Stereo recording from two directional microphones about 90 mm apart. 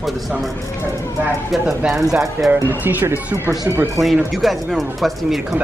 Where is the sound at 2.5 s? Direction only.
20° right (ahead or behind).